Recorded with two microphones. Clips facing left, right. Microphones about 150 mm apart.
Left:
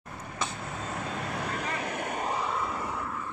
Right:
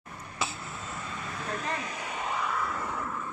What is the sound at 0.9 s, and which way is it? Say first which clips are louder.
Vehicle: left 5 dB; 65° left (ahead or behind).